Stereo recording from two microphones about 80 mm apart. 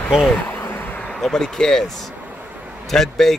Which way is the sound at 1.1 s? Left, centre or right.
Centre.